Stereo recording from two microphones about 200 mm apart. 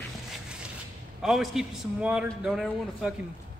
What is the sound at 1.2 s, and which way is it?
A man's voice, centre (ahead or behind).